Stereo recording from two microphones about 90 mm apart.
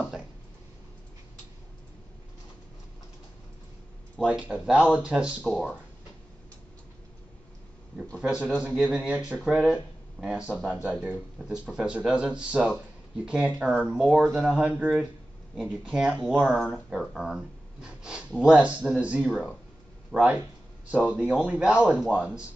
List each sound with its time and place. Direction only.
4.3 s speech: 15° right (ahead or behind)
5.4 s speech: centre (ahead or behind)
8.2 s speech: 10° right (ahead or behind)
16.9 s speech: centre (ahead or behind)